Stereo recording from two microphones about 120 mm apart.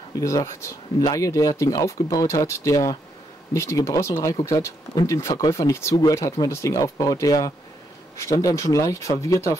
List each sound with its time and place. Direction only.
0.2 s speech: 25° left (ahead or behind)